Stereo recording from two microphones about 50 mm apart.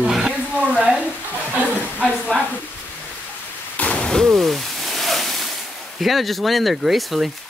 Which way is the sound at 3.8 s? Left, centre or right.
Left.